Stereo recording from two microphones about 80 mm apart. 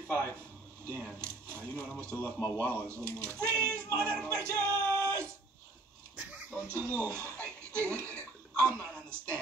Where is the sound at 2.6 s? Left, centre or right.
Left.